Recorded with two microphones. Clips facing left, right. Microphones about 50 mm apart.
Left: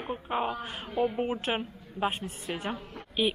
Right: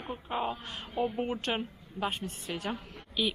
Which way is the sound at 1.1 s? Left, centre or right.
Centre.